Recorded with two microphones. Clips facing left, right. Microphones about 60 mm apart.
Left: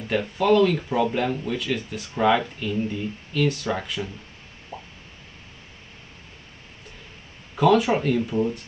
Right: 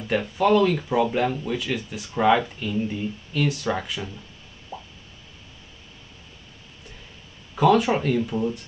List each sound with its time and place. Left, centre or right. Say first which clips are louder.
0.1 s speech: even; centre
4.7 s a sound: right 1 dB; left
7.5 s speech: even; centre